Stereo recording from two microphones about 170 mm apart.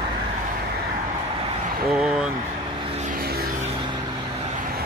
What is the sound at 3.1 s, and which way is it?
Vehicle, 65° right (ahead or behind).